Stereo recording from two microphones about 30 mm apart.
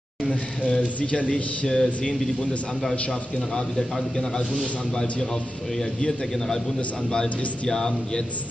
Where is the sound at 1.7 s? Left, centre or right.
Left.